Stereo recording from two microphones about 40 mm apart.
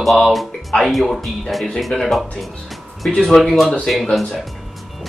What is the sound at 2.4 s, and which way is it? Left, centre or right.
Music, centre.